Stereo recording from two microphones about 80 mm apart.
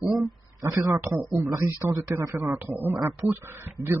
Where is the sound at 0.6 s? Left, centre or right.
Right.